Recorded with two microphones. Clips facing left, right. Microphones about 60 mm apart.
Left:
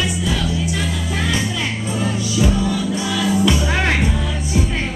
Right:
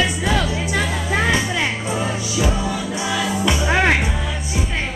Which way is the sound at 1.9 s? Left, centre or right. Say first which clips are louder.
Left 1 dB; centre.